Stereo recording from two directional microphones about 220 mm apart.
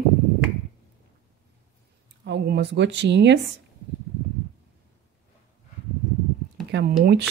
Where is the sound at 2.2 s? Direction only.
50° right (ahead or behind).